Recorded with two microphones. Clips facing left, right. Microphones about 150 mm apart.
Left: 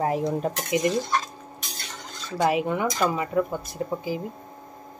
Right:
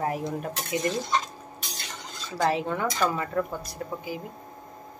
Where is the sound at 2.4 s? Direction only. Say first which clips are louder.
Left 3 dB; 15° left (ahead or behind).